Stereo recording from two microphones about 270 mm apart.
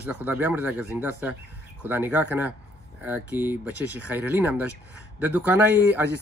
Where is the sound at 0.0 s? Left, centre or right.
Centre.